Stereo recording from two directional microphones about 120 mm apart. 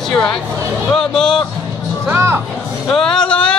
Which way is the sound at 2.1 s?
20° right (ahead or behind).